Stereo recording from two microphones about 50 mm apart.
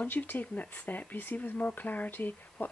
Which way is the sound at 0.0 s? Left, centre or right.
Left.